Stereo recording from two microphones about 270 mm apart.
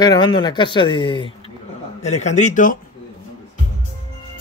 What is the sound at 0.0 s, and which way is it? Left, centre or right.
Speech, centre.